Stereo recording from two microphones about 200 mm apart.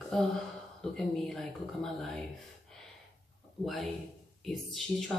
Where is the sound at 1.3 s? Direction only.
Centre (ahead or behind).